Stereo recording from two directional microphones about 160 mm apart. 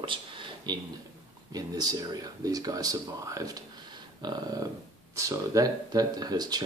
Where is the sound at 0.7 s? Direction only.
25° right (ahead or behind).